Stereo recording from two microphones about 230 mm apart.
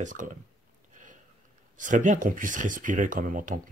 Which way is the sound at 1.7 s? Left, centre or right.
Right.